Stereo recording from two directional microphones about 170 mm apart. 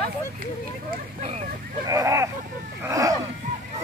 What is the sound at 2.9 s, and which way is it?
Speech, 20° right (ahead or behind).